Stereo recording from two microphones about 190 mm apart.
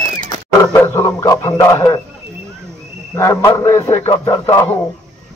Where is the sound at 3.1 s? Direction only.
15° left (ahead or behind).